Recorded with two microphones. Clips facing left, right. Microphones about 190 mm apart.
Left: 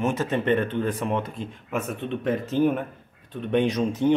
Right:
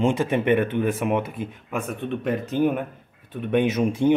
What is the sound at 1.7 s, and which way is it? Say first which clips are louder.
Speech: even; centre (ahead or behind).